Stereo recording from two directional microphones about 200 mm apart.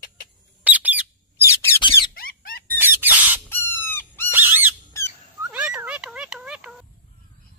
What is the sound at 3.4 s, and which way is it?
Bird, 10° left (ahead or behind).